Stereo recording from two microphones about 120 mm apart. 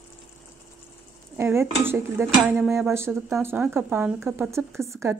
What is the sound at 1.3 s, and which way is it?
Speech, 20° right (ahead or behind).